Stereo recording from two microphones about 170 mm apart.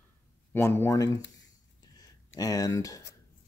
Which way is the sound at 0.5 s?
15° left (ahead or behind).